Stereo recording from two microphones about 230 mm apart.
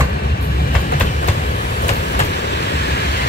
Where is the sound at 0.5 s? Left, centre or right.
Left.